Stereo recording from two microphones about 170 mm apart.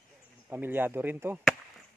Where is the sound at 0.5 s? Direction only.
10° right (ahead or behind).